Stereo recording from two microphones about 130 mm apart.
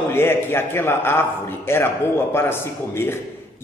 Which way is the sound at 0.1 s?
20° left (ahead or behind).